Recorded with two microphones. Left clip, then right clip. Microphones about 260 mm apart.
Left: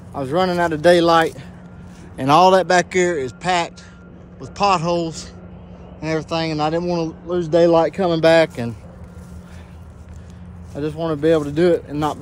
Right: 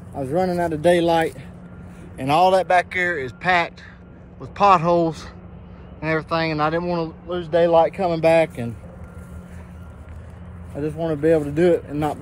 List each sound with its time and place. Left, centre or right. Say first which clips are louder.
0.3 s speech: left 3 dB; centre
2.1 s speech: left 4 dB; left
3.0 s speech: left 3 dB; centre
5.9 s speech: even; centre
11.0 s speech: left 1 dB; centre